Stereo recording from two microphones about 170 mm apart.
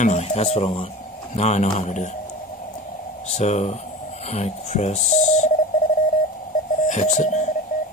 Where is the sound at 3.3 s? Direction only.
40° left (ahead or behind).